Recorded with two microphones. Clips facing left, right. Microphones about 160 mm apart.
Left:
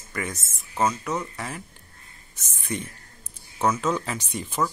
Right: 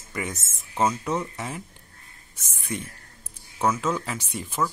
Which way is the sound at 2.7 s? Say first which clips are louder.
Left 1 dB; 10° right (ahead or behind).